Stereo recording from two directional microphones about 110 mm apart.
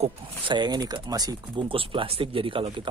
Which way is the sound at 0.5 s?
40° right (ahead or behind).